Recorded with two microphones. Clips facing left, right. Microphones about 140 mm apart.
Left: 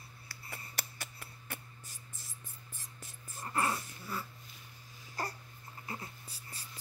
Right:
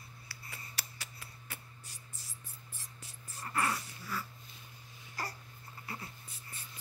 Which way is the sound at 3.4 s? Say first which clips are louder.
Left 1 dB; 25° left (ahead or behind).